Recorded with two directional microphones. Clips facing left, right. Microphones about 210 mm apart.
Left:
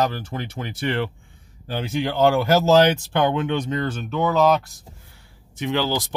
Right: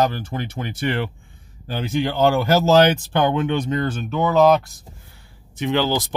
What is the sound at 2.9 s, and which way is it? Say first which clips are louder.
Speech: right 1 dB; 5° right (ahead or behind).